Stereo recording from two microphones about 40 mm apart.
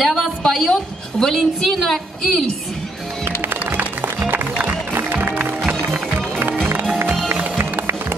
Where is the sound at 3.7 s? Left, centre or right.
Right.